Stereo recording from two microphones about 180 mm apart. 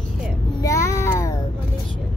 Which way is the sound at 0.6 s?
15° left (ahead or behind).